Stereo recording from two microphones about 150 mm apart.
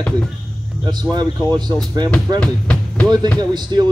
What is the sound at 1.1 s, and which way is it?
Speech, 30° right (ahead or behind).